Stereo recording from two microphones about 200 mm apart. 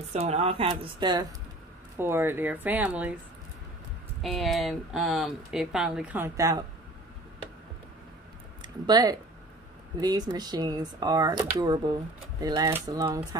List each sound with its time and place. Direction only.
0.1 s speech: 30° right (ahead or behind)
2.0 s speech: 10° right (ahead or behind)
4.2 s speech: centre (ahead or behind); by 6.6 s 15° right (ahead or behind)
8.8 s speech: 20° right (ahead or behind)